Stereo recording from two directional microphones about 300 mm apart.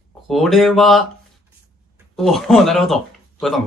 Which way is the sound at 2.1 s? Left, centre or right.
Centre.